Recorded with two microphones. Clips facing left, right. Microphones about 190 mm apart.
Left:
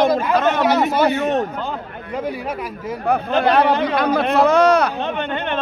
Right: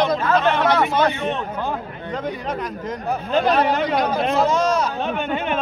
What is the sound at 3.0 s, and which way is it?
Speech, 65° left (ahead or behind).